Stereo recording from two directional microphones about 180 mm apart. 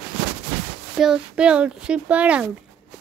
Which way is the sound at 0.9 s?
5° right (ahead or behind).